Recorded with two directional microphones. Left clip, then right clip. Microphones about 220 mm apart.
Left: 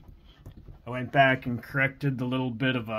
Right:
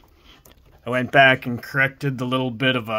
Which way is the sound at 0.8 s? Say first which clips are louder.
Right 8 dB; 50° right (ahead or behind).